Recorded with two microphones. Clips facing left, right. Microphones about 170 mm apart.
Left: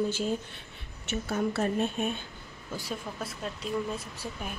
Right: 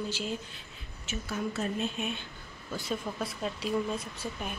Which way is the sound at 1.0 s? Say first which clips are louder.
Left 5 dB; 60° left (ahead or behind).